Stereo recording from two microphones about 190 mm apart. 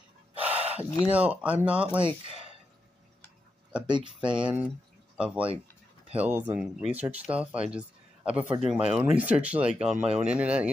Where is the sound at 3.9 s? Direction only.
25° right (ahead or behind).